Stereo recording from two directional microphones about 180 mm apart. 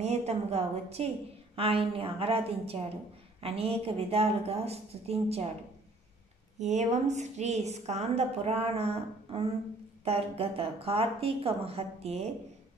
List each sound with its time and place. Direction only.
0.0 s a woman's voice: 35° right (ahead or behind)
6.6 s a woman's voice: 40° right (ahead or behind)